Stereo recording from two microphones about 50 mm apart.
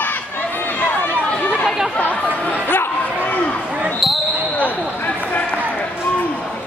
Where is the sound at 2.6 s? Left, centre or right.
Left.